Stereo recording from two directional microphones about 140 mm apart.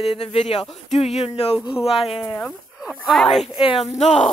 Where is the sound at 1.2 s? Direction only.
45° left (ahead or behind).